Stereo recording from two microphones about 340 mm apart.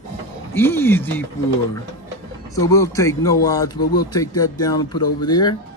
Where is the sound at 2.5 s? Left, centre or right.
Centre.